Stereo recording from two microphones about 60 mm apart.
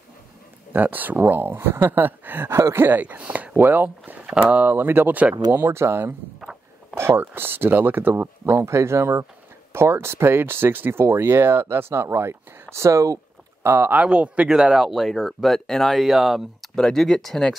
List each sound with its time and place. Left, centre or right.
0.7 s speech: right
4.3 s speech: centre
4.7 s speech: right
5.7 s speech: right
8.6 s speech: right
13.6 s speech: right
13.9 s speech: centre
14.5 s speech: centre